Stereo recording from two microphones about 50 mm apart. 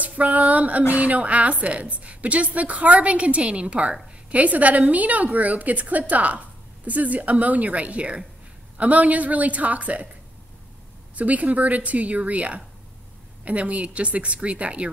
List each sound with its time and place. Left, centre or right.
0.0 s a woman's voice: right
11.1 s a woman's voice: right